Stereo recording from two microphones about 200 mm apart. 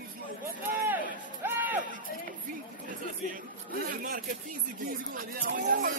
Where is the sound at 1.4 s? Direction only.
10° right (ahead or behind).